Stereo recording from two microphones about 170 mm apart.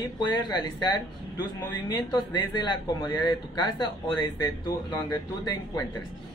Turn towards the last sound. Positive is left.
turn(degrees=25)  # may be behind; listen again after turning